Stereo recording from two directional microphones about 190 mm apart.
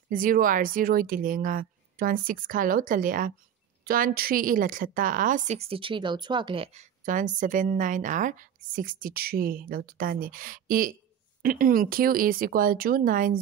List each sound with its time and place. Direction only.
0.1 s a woman's voice: 45° right (ahead or behind)